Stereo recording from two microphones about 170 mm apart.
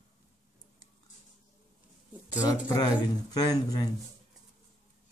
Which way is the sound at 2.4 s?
20° left (ahead or behind).